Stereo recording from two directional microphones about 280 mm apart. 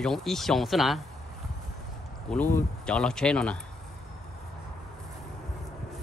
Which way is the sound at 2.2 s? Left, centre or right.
Centre.